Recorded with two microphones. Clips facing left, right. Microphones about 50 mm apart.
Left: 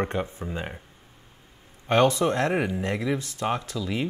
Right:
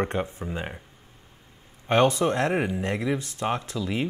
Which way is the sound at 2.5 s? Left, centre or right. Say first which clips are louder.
Even; centre.